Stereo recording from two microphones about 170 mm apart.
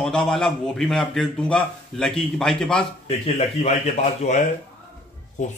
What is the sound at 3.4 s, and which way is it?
A man's voice, 40° left (ahead or behind).